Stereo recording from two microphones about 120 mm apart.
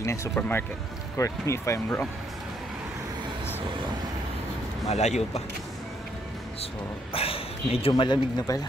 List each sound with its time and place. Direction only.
0.0 s speech: 25° left (ahead or behind)
4.8 s speech: 65° left (ahead or behind)
7.2 s a sound: 55° left (ahead or behind)
7.9 s speech: 35° left (ahead or behind)